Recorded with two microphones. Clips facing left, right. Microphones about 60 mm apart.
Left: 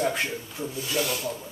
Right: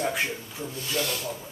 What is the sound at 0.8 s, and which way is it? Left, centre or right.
Speech, centre.